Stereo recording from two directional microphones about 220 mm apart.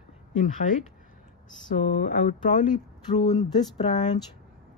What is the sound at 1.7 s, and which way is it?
Speech, 40° left (ahead or behind).